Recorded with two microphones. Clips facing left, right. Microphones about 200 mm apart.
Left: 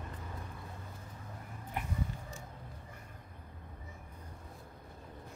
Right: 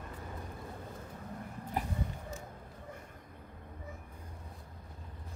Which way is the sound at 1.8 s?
40° right (ahead or behind).